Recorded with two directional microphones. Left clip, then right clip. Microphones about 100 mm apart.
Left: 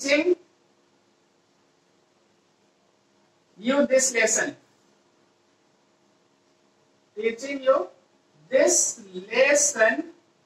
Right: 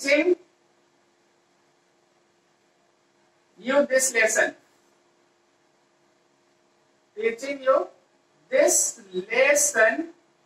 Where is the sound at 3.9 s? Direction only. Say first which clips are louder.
Even; 35° left (ahead or behind).